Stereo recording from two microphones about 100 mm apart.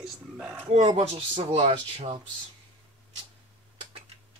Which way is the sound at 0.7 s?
90° right.